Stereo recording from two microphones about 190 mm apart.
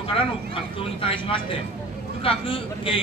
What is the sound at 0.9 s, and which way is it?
Speech, 30° left (ahead or behind).